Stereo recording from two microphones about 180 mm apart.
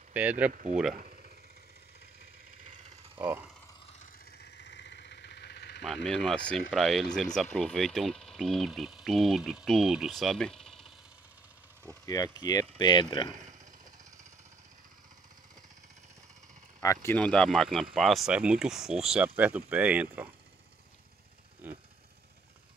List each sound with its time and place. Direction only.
0.1 s speech: 10° right (ahead or behind)
0.5 s speech: 45° right (ahead or behind)
1.0 s vehicle: 50° right (ahead or behind)
4.4 s vehicle: 75° left (ahead or behind)
6.0 s speech: 5° left (ahead or behind)
11.9 s speech: 20° left (ahead or behind)
16.8 s speech: 15° left (ahead or behind); by 20.3 s 10° right (ahead or behind)
21.6 s speech: 10° right (ahead or behind)